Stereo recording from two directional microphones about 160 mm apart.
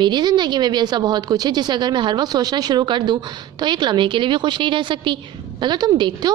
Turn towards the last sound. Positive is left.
turn(degrees=-30)  # may be behind; listen again after turning